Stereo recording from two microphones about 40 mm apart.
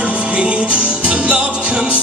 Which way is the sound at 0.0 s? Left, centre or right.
Right.